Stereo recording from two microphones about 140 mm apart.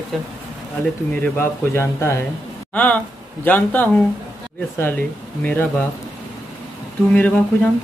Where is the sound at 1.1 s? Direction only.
15° left (ahead or behind).